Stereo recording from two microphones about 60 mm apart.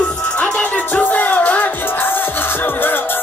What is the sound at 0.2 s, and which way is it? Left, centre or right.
Music, left.